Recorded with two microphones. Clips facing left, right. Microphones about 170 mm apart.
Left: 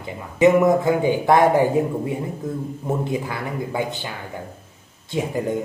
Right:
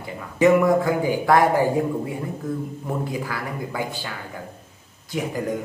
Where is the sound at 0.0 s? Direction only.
20° left (ahead or behind).